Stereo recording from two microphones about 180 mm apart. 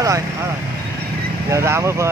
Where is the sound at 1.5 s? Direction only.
15° right (ahead or behind).